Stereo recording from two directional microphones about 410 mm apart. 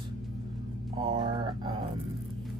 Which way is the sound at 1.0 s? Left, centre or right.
Centre.